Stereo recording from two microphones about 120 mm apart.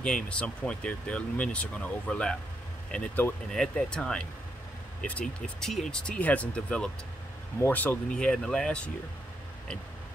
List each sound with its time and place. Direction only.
0.0 s speech: 10° left (ahead or behind)